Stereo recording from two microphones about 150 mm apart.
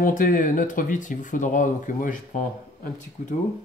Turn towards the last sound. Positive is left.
turn(degrees=65)  # may be behind; listen again after turning